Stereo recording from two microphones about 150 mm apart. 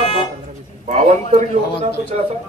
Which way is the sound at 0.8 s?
55° right (ahead or behind).